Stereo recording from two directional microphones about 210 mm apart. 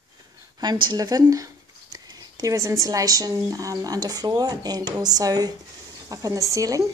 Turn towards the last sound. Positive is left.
turn(degrees=-15)  # may be behind; listen again after turning